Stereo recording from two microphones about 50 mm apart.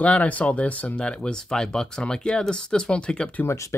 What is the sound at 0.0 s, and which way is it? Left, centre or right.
Speech, left.